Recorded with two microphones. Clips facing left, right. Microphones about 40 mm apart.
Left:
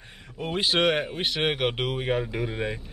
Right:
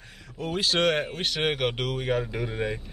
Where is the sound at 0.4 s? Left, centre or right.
Left.